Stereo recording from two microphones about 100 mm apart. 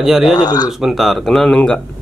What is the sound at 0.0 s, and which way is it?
Speech, centre (ahead or behind).